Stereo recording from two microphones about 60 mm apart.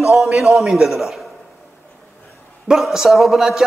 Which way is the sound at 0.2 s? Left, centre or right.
Centre.